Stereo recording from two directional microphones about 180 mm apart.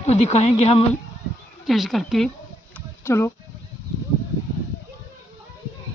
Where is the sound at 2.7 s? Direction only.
15° left (ahead or behind).